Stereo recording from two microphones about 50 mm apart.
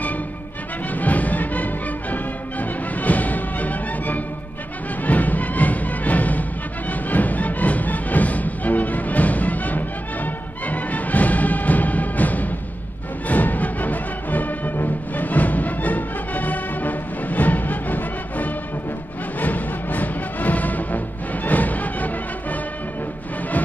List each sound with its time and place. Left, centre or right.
0.9 s music: left